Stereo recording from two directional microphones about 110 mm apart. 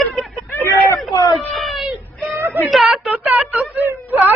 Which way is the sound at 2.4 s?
25° right (ahead or behind).